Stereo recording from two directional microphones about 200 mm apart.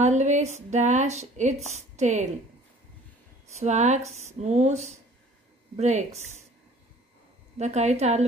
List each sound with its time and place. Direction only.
0.0 s speech: 35° right (ahead or behind)
3.5 s speech: 35° right (ahead or behind)
7.5 s speech: 35° right (ahead or behind)